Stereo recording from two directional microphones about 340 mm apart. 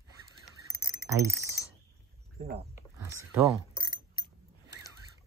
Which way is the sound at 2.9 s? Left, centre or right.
Centre.